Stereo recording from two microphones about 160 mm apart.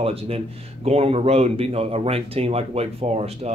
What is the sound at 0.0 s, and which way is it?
Speech, 40° right (ahead or behind).